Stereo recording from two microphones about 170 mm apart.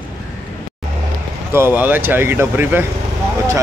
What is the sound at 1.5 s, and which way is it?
Speech, 15° right (ahead or behind).